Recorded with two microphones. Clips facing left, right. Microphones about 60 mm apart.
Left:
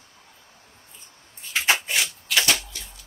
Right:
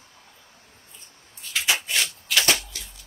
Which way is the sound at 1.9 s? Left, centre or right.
Centre.